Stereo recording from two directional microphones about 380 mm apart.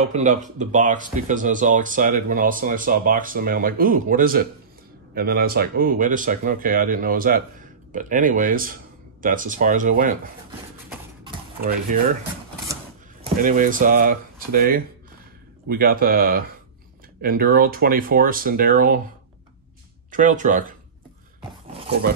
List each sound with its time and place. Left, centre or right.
0.0 s speech: centre
11.6 s speech: right
20.1 s speech: centre